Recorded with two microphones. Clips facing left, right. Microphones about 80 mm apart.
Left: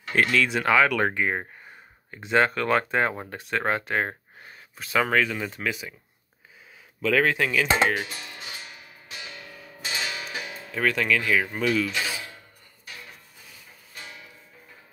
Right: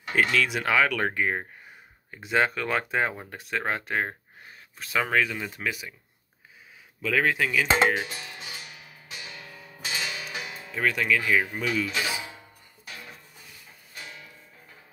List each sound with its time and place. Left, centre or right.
0.1 s speech: centre
7.0 s speech: centre
7.8 s speech: centre
10.7 s speech: centre